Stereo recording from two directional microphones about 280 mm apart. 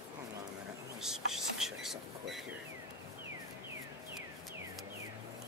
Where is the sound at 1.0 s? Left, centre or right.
Centre.